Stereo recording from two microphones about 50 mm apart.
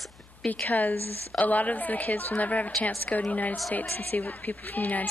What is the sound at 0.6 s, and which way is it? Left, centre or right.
A woman's voice, left.